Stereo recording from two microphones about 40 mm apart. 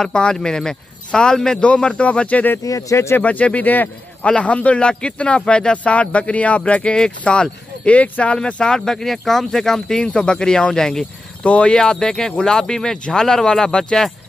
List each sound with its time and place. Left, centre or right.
0.0 s speech: centre
1.6 s speech: left
4.2 s speech: left
8.6 s speech: centre
11.4 s speech: left
11.8 s speech: centre